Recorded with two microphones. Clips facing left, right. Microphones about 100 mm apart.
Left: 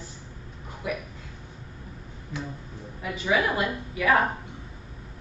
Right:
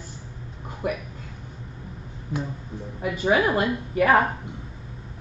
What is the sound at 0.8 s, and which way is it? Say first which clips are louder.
Speech: right 4 dB; 50° right (ahead or behind).